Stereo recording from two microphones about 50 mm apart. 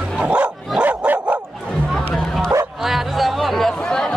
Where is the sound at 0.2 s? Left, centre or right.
Right.